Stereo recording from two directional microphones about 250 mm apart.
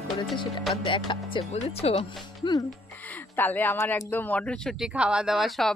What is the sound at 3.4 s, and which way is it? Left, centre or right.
Speech, centre.